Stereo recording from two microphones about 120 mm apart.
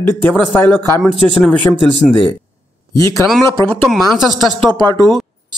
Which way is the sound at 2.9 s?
25° left (ahead or behind).